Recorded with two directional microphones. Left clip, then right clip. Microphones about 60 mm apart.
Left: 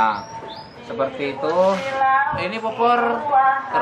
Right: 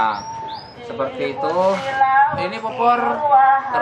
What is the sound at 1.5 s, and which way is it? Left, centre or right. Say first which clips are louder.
Speech: left 1 dB; right.